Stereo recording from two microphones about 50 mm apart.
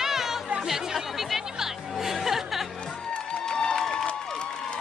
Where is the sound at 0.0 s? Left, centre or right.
Centre.